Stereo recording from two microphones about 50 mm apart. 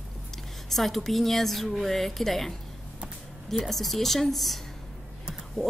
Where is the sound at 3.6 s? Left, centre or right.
Centre.